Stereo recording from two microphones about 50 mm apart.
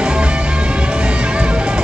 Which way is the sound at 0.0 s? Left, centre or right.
Centre.